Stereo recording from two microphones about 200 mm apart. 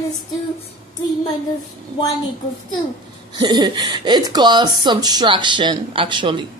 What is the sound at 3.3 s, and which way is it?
Speech, 20° right (ahead or behind).